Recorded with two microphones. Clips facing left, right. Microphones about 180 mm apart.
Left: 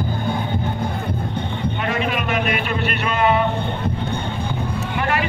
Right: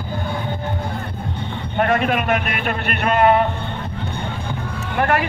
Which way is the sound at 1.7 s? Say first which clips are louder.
Right 7 dB; 50° right (ahead or behind).